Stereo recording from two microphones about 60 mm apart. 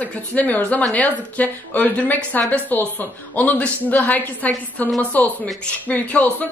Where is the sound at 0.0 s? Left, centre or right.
Left.